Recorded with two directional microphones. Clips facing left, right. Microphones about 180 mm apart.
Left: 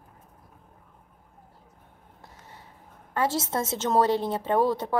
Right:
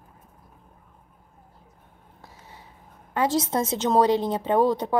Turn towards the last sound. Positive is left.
turn(degrees=-20)  # may be behind; listen again after turning